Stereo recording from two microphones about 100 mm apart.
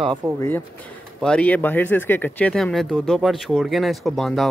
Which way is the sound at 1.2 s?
10° left (ahead or behind).